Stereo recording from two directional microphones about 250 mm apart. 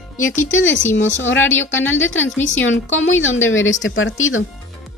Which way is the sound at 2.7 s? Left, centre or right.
Left.